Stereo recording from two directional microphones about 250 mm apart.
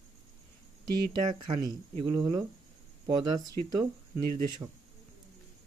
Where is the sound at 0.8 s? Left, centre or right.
Right.